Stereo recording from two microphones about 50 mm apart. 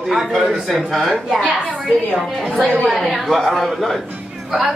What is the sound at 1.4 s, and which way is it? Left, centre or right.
A woman's voice, centre.